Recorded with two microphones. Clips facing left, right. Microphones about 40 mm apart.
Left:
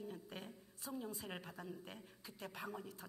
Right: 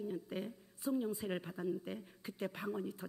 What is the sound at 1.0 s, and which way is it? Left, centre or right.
Speech, right.